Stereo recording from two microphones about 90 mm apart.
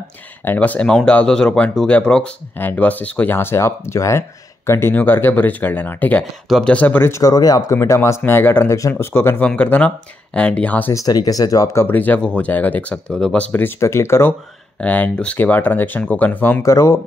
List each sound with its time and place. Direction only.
0.5 s speech: 15° left (ahead or behind)
2.5 s speech: 25° left (ahead or behind)
10.9 s speech: 40° left (ahead or behind)
11.8 s speech: 20° left (ahead or behind)
13.5 s speech: 20° left (ahead or behind)
13.7 s speech: 30° left (ahead or behind)
14.8 s speech: 15° left (ahead or behind)
16.6 s speech: 35° left (ahead or behind)